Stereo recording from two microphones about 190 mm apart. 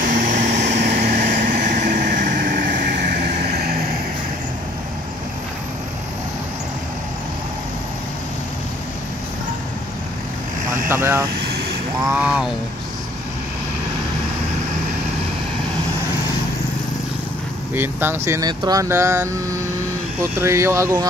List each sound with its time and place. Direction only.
0.0 s vehicle: 45° right (ahead or behind)
10.9 s speech: 10° right (ahead or behind)
17.7 s speech: 10° right (ahead or behind)